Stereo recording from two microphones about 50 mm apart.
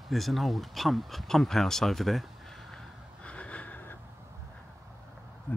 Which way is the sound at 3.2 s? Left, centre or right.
Left.